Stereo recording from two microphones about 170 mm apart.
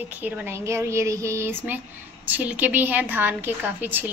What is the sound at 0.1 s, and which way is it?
A woman's voice, 10° right (ahead or behind).